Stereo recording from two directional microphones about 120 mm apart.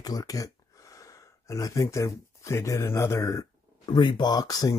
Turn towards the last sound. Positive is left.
turn(degrees=30)  # may be behind; listen again after turning